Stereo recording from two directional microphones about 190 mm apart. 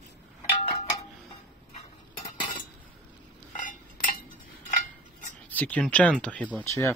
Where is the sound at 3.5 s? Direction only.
45° left (ahead or behind).